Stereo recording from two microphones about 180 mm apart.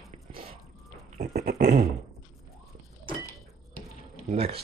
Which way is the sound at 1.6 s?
60° right (ahead or behind).